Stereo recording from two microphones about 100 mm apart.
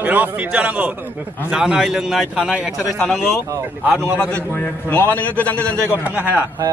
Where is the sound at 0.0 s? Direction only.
15° right (ahead or behind); by 3.3 s 5° left (ahead or behind).